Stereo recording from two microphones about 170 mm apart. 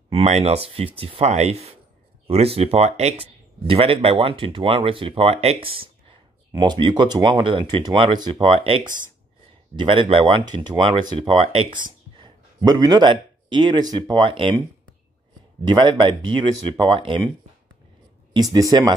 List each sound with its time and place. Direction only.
0.1 s speech: 40° right (ahead or behind)
15.6 s speech: 25° right (ahead or behind)
18.3 s speech: 25° right (ahead or behind)